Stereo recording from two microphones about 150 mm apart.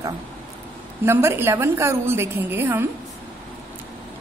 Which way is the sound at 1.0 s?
15° right (ahead or behind).